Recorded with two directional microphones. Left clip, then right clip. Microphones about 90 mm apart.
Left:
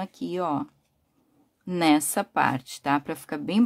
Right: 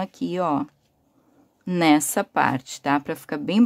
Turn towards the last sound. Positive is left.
turn(degrees=-25)  # may be behind; listen again after turning